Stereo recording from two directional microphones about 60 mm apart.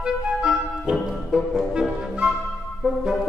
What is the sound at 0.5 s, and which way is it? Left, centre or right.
Music, centre.